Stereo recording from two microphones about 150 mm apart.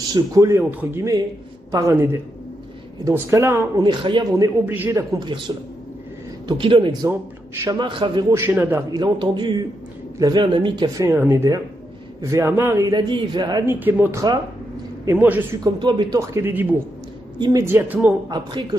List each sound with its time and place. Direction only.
0.1 s a man's voice: 25° right (ahead or behind)
3.1 s a man's voice: 20° right (ahead or behind)
4.6 s speech: 15° right (ahead or behind)
5.5 s a man's voice: 30° right (ahead or behind)
8.3 s speech: 15° right (ahead or behind)
8.9 s a man's voice: 30° right (ahead or behind)
11.0 s a man's voice: 15° right (ahead or behind)
13.7 s speech: 10° right (ahead or behind)
15.6 s a man's voice: 30° right (ahead or behind); by 18.1 s 10° right (ahead or behind)
18.3 s a man's voice: 30° right (ahead or behind)